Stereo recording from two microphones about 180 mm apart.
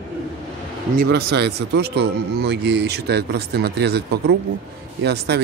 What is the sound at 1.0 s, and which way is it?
A man's voice, 65° right (ahead or behind).